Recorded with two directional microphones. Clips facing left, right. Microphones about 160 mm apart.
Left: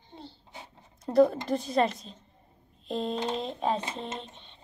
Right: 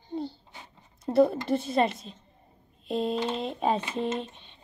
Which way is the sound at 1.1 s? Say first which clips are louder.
Even; 5° right (ahead or behind).